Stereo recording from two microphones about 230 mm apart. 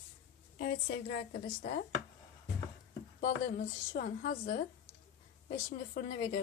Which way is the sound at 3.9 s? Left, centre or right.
Left.